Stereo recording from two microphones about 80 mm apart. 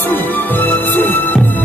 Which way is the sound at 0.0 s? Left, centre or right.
Left.